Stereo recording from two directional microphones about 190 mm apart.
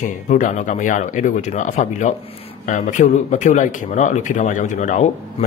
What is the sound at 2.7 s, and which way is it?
Speech, 40° left (ahead or behind).